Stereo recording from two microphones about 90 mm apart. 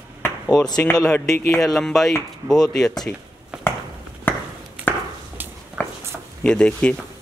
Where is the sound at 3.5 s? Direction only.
10° right (ahead or behind).